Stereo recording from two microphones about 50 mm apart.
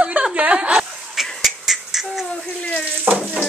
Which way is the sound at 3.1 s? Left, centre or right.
Right.